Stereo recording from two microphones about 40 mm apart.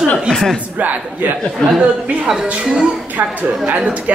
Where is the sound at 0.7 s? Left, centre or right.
Right.